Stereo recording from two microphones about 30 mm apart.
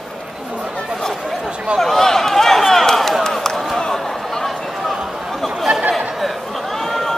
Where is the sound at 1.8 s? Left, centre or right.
Centre.